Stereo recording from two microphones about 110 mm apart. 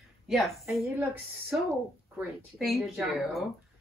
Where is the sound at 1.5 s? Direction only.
25° right (ahead or behind).